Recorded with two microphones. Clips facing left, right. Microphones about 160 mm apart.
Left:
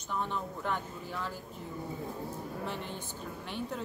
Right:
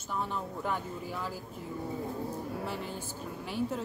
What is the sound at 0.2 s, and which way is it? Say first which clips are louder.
Speech: right 2 dB; 5° right (ahead or behind).